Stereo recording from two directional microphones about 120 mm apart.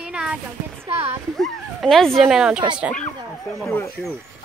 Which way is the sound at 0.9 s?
60° right (ahead or behind).